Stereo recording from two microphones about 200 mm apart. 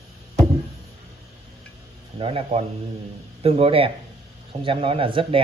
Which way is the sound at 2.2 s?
30° right (ahead or behind).